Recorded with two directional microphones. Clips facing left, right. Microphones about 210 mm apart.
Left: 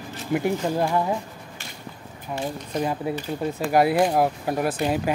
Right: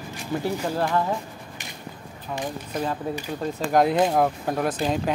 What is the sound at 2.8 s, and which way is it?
Speech, 10° left (ahead or behind).